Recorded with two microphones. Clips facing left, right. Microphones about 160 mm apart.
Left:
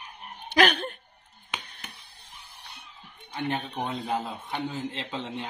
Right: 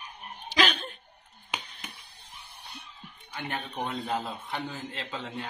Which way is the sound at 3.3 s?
30° left (ahead or behind).